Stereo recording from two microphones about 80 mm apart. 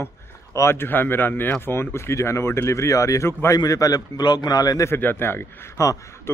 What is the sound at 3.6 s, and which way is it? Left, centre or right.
A man's voice, left.